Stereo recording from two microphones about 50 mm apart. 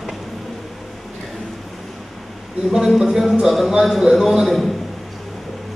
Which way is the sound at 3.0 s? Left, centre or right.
Centre.